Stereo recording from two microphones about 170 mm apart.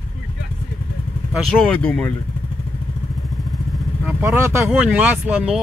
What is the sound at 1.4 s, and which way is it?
Speech, 5° left (ahead or behind).